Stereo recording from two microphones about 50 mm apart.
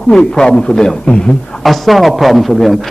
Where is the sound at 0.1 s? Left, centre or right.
Centre.